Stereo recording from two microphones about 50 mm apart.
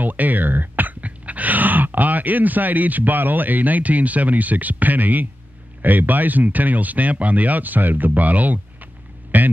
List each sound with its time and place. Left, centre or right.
0.0 s speech: right